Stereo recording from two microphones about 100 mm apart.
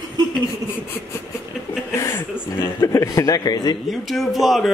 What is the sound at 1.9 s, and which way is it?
Chuckle, 25° left (ahead or behind).